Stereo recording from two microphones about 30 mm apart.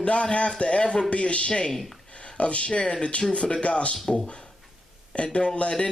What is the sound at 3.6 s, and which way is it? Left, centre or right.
Speech, left.